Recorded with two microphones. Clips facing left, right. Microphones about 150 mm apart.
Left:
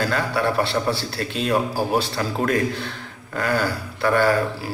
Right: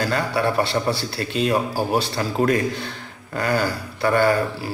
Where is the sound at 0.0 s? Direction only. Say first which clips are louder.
Even; centre (ahead or behind).